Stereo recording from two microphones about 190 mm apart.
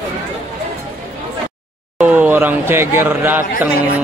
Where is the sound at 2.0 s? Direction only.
10° right (ahead or behind).